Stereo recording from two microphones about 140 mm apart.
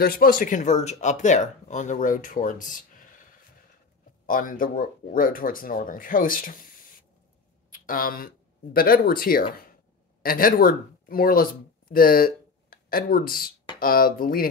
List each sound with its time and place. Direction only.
0.0 s speech: 90° left; by 3.1 s 70° left (ahead or behind)
4.3 s speech: 85° left